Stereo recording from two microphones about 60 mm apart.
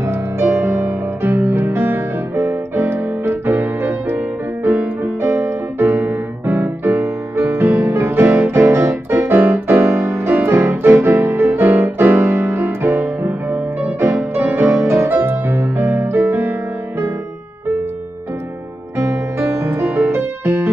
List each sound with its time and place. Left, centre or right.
0.0 s music: right
4.6 s music: right
5.0 s music: right
5.4 s music: right
7.8 s piano: right
12.9 s music: right
13.9 s music: right
18.9 s music: right
20.2 s music: right